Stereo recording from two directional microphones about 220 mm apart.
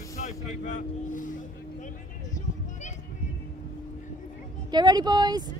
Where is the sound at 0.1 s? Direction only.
35° left (ahead or behind).